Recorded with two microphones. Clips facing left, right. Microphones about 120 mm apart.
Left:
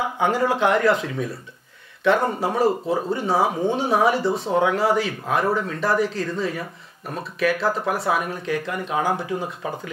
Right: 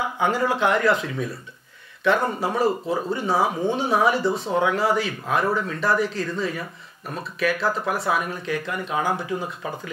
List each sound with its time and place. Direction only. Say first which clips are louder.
0.0 s speech: left 1 dB; 40° left (ahead or behind)